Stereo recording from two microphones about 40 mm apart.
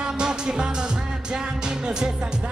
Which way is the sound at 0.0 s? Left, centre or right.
Right.